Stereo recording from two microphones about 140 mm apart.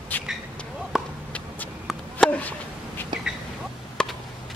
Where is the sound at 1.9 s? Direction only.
5° left (ahead or behind).